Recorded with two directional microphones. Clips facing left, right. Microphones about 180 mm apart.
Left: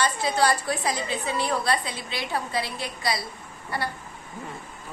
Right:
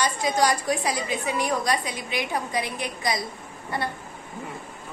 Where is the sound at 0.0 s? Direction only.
15° right (ahead or behind).